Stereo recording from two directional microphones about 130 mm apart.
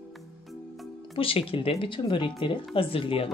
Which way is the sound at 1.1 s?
45° left (ahead or behind).